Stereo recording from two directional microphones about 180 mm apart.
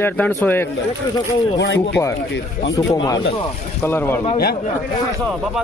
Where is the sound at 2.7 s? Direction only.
20° left (ahead or behind).